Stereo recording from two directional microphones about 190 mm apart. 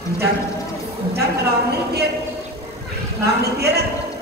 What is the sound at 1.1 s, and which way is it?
Speech, 55° right (ahead or behind).